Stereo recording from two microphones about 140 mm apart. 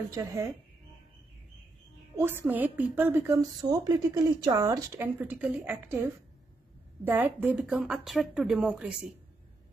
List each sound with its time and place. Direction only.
0.1 s speech: 25° right (ahead or behind)
2.1 s a woman's voice: 15° right (ahead or behind)
7.1 s a woman's voice: 15° right (ahead or behind)